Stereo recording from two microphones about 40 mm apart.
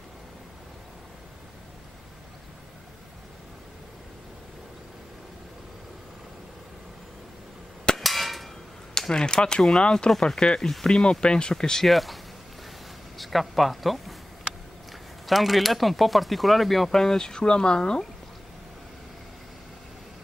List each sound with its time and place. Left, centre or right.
8.0 s clang: centre
9.1 s speech: centre
11.9 s speech: centre
13.2 s speech: centre